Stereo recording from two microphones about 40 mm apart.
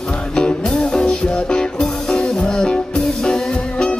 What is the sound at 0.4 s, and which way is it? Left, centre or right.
Music, centre.